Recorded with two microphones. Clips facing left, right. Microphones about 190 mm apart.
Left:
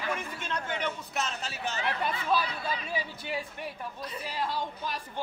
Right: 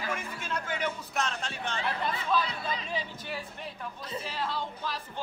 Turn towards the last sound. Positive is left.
turn(degrees=15)  # may be behind; listen again after turning